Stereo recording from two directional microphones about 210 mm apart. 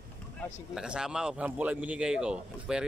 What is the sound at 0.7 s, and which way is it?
A man's voice, 5° right (ahead or behind).